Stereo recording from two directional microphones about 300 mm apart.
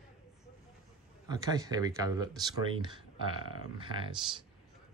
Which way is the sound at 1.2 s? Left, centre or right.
Centre.